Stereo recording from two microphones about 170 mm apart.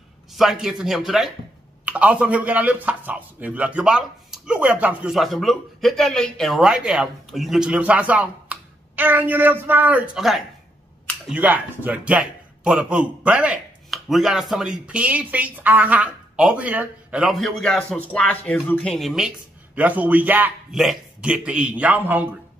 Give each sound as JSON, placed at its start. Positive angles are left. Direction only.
{"t": 0.3, "sound": "speech", "side_deg": 0}